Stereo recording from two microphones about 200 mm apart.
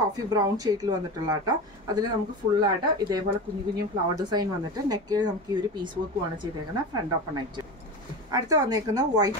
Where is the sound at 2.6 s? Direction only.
20° right (ahead or behind).